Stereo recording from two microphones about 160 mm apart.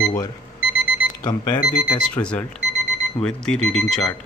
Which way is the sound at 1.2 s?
25° left (ahead or behind).